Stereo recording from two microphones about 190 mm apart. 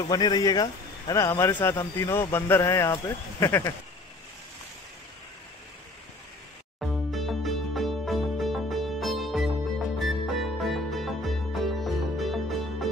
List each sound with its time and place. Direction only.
0.1 s speech: 20° left (ahead or behind)
6.8 s music: centre (ahead or behind)